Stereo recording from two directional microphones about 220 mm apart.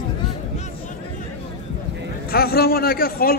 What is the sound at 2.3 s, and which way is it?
A man's voice, 45° left (ahead or behind).